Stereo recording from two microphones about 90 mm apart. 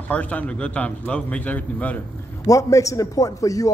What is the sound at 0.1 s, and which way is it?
A man's voice, 15° left (ahead or behind).